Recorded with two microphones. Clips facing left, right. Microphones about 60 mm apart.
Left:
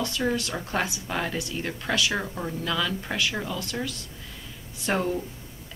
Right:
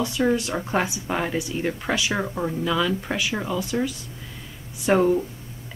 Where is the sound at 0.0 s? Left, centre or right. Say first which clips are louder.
Right 5 dB; centre.